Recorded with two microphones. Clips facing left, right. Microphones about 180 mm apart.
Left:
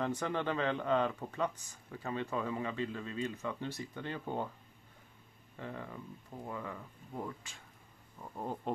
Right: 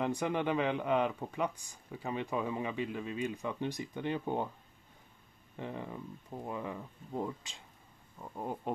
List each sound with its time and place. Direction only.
0.0 s speech: 15° right (ahead or behind)
5.6 s speech: 20° right (ahead or behind)
8.2 s speech: 5° right (ahead or behind)